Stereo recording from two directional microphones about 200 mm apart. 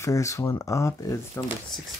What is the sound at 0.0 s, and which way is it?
Speech, 15° left (ahead or behind).